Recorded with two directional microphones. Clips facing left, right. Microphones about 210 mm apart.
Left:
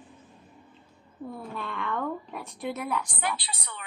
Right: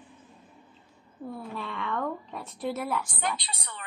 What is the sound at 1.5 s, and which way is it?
A woman's voice, centre (ahead or behind).